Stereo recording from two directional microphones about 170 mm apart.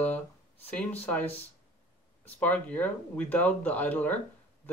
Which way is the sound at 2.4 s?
10° left (ahead or behind).